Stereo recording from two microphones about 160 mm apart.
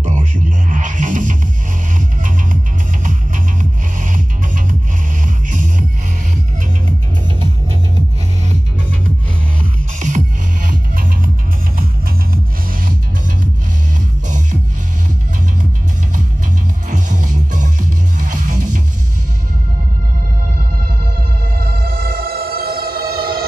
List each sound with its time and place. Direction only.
0.0 s music: 50° right (ahead or behind)
9.9 s music: 50° right (ahead or behind)
16.9 s music: 50° right (ahead or behind)
21.5 s music: 80° right